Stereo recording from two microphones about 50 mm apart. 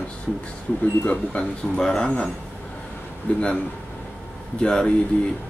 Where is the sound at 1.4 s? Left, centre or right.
Centre; by 3.4 s left.